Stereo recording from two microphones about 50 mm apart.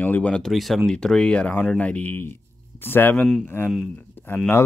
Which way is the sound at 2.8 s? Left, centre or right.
Left.